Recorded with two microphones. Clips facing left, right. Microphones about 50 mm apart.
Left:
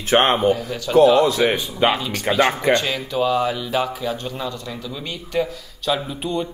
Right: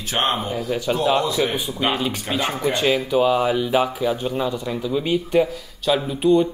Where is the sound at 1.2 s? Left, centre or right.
Left.